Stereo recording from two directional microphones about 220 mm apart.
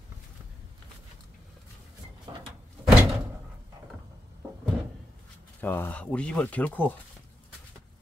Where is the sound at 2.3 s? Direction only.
20° right (ahead or behind).